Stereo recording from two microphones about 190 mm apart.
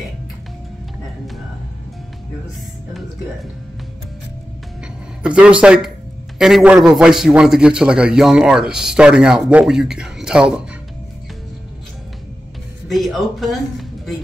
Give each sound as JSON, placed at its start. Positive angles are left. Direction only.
{"t": 5.2, "sound": "a man's voice", "side_deg": -5}
{"t": 12.8, "sound": "speech", "side_deg": 0}